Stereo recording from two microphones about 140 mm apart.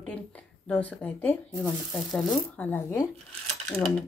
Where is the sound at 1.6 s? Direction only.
Centre (ahead or behind); by 3.0 s 15° left (ahead or behind).